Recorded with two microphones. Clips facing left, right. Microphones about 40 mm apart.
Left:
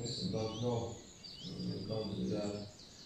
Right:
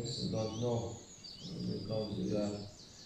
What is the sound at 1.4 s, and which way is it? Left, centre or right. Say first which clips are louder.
Speech: right 2 dB; left.